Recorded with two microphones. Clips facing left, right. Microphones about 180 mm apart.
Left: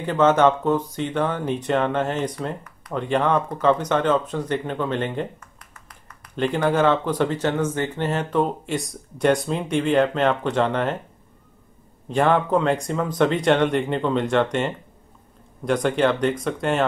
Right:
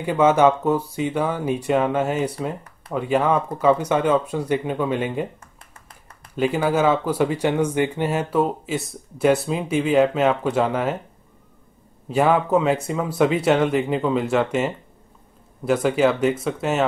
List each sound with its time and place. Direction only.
0.0 s speech: 10° right (ahead or behind)
5.6 s a sound: 25° right (ahead or behind)
6.3 s speech: 5° right (ahead or behind)
12.1 s speech: 5° right (ahead or behind)